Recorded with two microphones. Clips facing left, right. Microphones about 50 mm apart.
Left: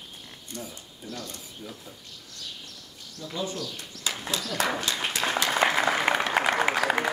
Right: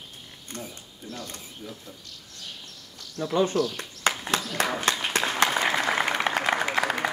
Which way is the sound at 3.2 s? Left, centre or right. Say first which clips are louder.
Right 9 dB; right.